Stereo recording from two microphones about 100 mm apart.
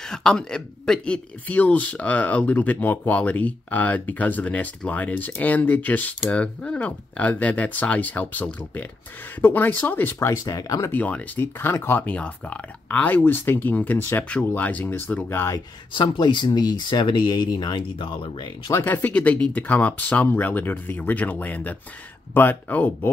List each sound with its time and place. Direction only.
0.0 s speech: 5° left (ahead or behind)
10.1 s speech: 35° left (ahead or behind)
10.9 s speech: 15° left (ahead or behind)
15.2 s speech: 25° left (ahead or behind)
15.9 s speech: 50° left (ahead or behind)
18.7 s speech: 20° left (ahead or behind)